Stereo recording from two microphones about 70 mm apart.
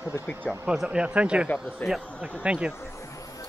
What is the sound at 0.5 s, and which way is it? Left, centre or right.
Speech, centre.